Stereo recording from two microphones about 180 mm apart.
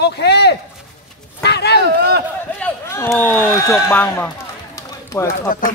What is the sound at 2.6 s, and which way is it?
Speech, 15° left (ahead or behind).